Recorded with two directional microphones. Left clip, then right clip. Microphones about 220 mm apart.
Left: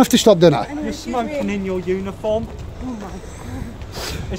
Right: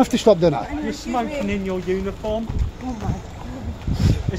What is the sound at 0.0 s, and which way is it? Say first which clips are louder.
Speech: left 4 dB; 40° left (ahead or behind).